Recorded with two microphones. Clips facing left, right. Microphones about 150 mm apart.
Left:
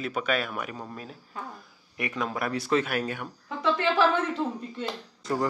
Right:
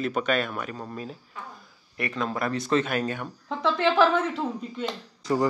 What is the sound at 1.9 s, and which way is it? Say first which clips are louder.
Speech: right 2 dB; 15° left (ahead or behind).